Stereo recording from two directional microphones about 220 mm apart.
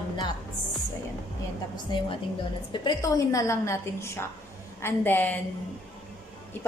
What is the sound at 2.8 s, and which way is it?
A woman's voice, 15° left (ahead or behind).